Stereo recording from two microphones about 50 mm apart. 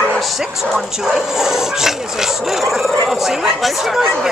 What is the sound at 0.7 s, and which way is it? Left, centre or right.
Speech, centre.